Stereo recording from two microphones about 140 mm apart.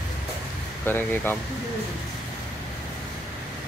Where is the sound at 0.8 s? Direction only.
15° left (ahead or behind).